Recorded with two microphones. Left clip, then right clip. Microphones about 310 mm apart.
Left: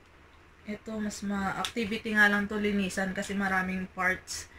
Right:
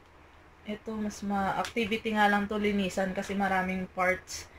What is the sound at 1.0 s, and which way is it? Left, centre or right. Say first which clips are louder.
Speech: right 3 dB; centre.